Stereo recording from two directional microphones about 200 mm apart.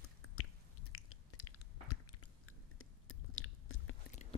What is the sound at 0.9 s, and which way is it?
Chewing, 90° left.